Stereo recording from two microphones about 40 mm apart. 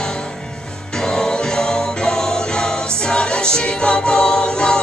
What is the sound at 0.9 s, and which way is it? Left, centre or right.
Music, centre.